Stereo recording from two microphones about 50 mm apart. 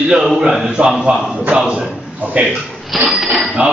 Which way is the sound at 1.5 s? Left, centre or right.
Right.